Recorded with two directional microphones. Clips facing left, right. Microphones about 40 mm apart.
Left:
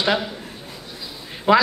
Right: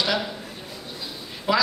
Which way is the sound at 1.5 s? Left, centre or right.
Left.